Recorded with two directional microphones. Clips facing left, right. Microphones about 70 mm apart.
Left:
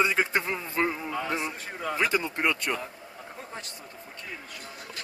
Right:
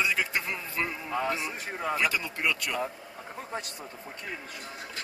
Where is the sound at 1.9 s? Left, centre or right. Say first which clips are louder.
Left 4 dB; left.